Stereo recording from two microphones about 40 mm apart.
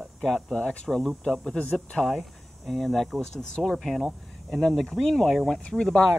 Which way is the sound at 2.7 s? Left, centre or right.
Centre.